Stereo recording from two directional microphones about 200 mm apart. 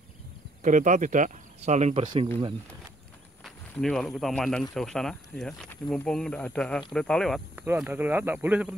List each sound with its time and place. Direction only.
0.6 s speech: 40° right (ahead or behind)
3.4 s speech: 5° left (ahead or behind)
7.6 s speech: 10° right (ahead or behind)